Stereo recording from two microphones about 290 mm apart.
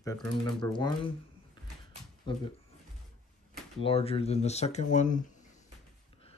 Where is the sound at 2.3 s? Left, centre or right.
Centre.